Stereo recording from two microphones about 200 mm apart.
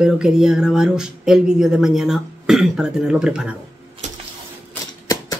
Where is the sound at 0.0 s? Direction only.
5° right (ahead or behind).